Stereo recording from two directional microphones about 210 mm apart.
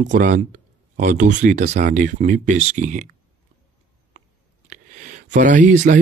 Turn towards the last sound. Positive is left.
turn(degrees=-35)  # may be behind; listen again after turning